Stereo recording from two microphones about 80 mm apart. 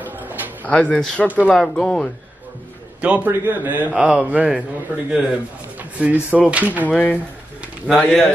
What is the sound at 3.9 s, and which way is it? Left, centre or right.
Speech, centre.